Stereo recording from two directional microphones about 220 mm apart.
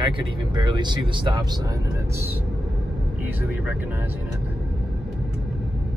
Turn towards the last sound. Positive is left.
turn(degrees=-10)  # may be behind; listen again after turning